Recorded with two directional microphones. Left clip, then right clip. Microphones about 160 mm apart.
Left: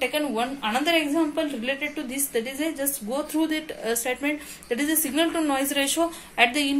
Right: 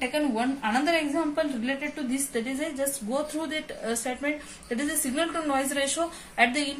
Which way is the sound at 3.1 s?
40° left (ahead or behind).